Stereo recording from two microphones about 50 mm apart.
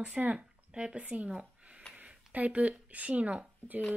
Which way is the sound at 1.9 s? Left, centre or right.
Right.